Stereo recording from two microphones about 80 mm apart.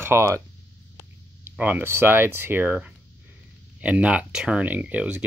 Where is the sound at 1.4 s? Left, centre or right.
Right.